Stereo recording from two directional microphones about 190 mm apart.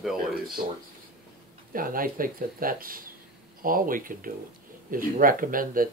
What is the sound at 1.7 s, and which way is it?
Speech, 50° right (ahead or behind).